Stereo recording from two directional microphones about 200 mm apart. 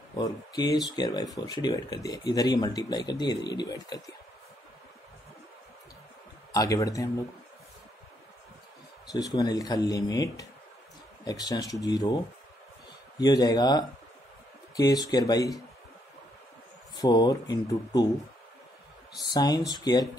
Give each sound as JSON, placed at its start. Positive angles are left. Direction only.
{"t": 0.1, "sound": "speech", "side_deg": 20}
{"t": 6.5, "sound": "speech", "side_deg": 15}
{"t": 9.1, "sound": "speech", "side_deg": 20}
{"t": 13.2, "sound": "speech", "side_deg": 20}
{"t": 16.9, "sound": "speech", "side_deg": 20}
{"t": 19.3, "sound": "speech", "side_deg": 20}